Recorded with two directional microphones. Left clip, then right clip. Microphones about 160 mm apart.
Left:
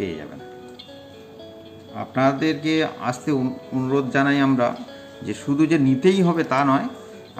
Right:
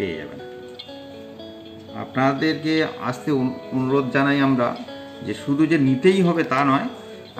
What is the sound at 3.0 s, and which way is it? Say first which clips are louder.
Speech: even; 5° left (ahead or behind).